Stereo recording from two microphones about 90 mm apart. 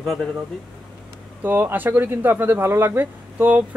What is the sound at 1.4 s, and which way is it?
Speech, 20° right (ahead or behind).